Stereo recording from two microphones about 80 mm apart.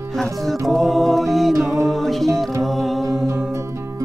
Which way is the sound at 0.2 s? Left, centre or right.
Centre.